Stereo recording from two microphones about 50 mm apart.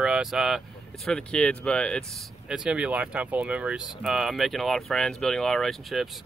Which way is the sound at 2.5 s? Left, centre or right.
Centre.